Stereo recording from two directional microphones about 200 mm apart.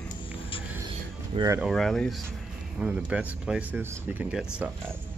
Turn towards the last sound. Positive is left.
turn(degrees=-5)  # may be behind; listen again after turning